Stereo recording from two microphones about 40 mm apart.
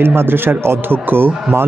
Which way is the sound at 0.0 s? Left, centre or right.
Right.